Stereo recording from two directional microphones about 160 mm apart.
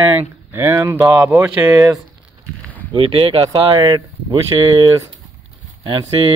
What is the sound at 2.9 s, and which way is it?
Speech, 35° right (ahead or behind).